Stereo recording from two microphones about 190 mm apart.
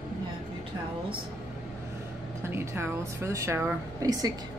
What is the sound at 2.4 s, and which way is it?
Speech, 10° right (ahead or behind).